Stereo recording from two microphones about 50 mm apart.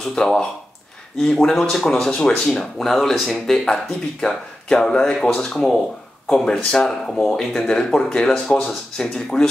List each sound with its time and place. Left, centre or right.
0.1 s speech: centre
7.7 s speech: centre